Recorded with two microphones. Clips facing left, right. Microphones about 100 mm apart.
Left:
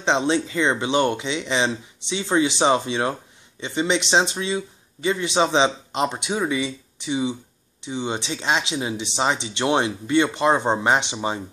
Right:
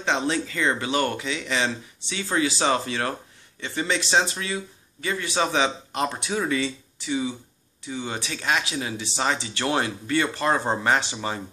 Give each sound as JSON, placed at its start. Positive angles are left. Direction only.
{"t": 0.0, "sound": "speech", "side_deg": 25}